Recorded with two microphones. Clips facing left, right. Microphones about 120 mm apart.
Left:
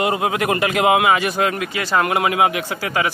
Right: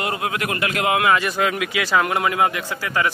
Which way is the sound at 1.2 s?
50° left (ahead or behind).